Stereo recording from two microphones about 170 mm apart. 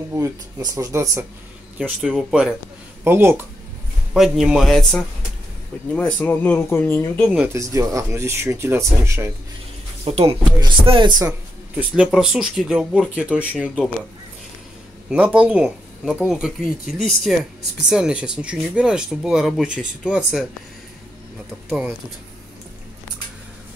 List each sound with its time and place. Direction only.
0.1 s speech: 20° right (ahead or behind)
1.8 s speech: centre (ahead or behind)
3.0 s speech: 15° right (ahead or behind)
4.1 s speech: 5° right (ahead or behind)
7.3 s speech: 15° right (ahead or behind)
10.0 s speech: 35° right (ahead or behind)
11.7 s speech: 5° right (ahead or behind)
15.0 s speech: 5° right (ahead or behind)
21.6 s speech: 5° right (ahead or behind)